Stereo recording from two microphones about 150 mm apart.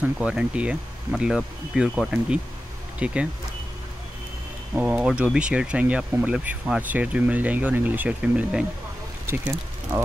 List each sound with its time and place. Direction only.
0.0 s speech: 5° right (ahead or behind)
4.7 s speech: 10° right (ahead or behind)